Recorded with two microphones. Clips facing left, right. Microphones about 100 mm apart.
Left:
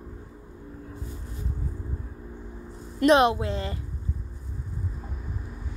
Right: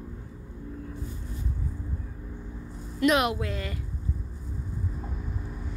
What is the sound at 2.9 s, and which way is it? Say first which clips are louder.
Speech: left 5 dB; 30° left (ahead or behind).